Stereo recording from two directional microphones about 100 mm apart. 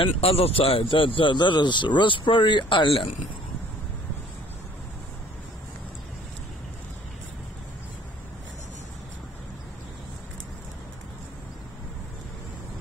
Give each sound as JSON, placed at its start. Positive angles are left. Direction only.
{"t": 0.0, "sound": "speech", "side_deg": 80}